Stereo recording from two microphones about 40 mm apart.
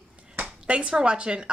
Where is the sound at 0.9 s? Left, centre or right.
Right.